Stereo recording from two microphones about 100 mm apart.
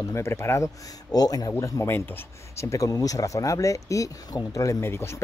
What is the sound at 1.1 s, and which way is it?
Speech, 40° left (ahead or behind).